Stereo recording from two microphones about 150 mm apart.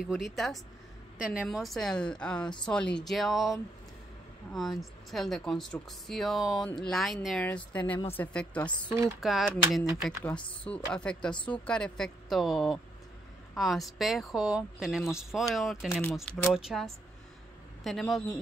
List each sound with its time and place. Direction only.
0.1 s speech: centre (ahead or behind)
8.9 s speech: 15° right (ahead or behind)
9.2 s speech: centre (ahead or behind)
11.3 s a woman's voice: 35° left (ahead or behind)
11.6 s speech: 5° left (ahead or behind)